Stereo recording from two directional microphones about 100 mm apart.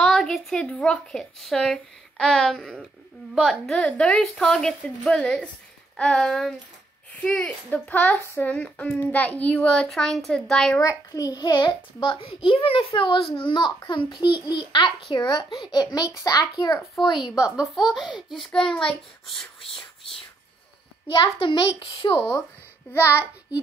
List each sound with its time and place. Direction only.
0.0 s a woman's voice: 5° left (ahead or behind)
10.8 s a child's voice: 35° left (ahead or behind)
16.8 s a woman's voice: centre (ahead or behind)
21.1 s a child's voice: 55° left (ahead or behind)